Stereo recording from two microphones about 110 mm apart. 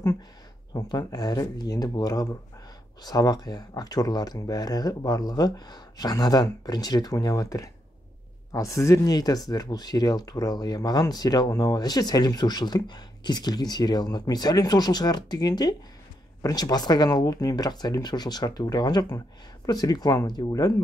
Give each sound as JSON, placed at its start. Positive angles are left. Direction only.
{"t": 0.7, "sound": "speech", "side_deg": 35}